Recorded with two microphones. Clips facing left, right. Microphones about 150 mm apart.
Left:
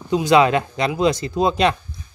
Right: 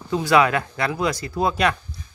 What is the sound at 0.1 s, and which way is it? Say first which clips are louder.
Speech: left 3 dB; 20° left (ahead or behind).